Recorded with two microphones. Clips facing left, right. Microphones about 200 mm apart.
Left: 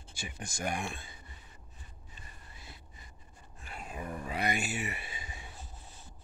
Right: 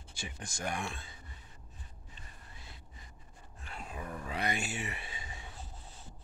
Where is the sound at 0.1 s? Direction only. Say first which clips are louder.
Left 1 dB; 10° left (ahead or behind).